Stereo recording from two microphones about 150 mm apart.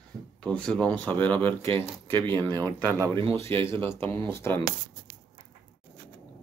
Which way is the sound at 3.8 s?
15° left (ahead or behind).